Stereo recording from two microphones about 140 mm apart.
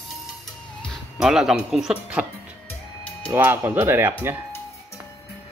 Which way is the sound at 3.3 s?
15° right (ahead or behind).